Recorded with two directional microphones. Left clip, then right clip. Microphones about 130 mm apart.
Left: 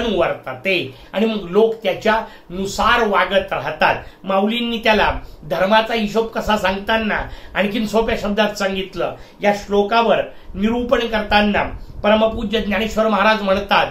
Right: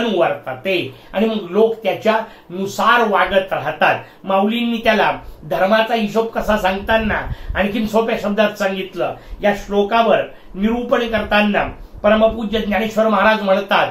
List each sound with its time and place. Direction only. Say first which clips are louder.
0.7 s speech: left 1 dB; 20° left (ahead or behind)